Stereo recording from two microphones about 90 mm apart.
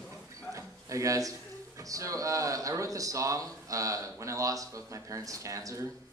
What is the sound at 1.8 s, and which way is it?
Speech, 40° right (ahead or behind).